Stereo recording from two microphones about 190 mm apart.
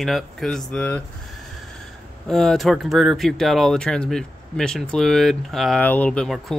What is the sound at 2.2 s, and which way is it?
Speech, centre (ahead or behind).